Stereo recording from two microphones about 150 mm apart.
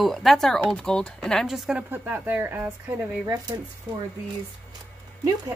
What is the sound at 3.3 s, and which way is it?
Speech, 25° right (ahead or behind).